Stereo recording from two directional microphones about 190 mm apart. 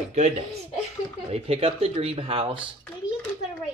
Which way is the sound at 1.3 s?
35° right (ahead or behind).